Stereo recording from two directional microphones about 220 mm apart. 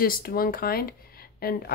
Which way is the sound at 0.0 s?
40° left (ahead or behind).